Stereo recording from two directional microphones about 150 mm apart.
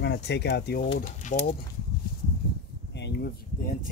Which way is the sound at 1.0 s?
60° left (ahead or behind).